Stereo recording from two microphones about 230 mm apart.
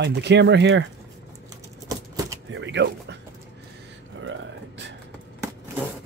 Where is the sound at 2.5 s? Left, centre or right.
Right.